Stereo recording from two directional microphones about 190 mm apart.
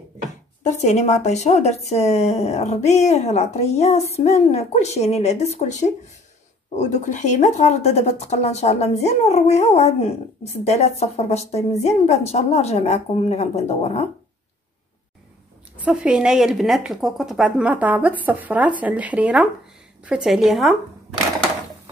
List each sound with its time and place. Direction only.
0.7 s speech: 35° left (ahead or behind)
15.8 s a woman's voice: 5° right (ahead or behind)